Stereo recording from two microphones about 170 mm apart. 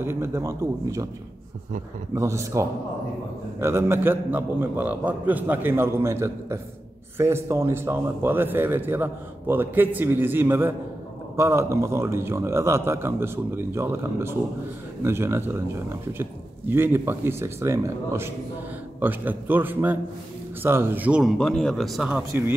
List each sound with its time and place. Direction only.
0.0 s a man's voice: 15° right (ahead or behind)
2.1 s a man's voice: 15° right (ahead or behind); by 22.2 s centre (ahead or behind)